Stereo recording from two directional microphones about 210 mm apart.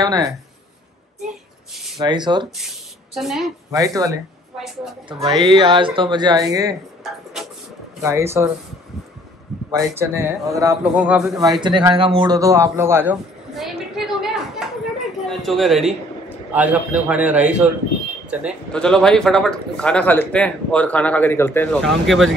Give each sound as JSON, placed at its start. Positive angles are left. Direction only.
{"t": 0.0, "sound": "a man's voice", "side_deg": -20}
{"t": 2.0, "sound": "speech", "side_deg": -20}
{"t": 3.2, "sound": "a man's voice", "side_deg": 0}
{"t": 3.7, "sound": "a man's voice", "side_deg": -15}
{"t": 5.4, "sound": "speech", "side_deg": -20}
{"t": 8.0, "sound": "a man's voice", "side_deg": -15}
{"t": 9.7, "sound": "a man's voice", "side_deg": -15}
{"t": 11.6, "sound": "a sound", "side_deg": -20}
{"t": 15.2, "sound": "a man's voice", "side_deg": 0}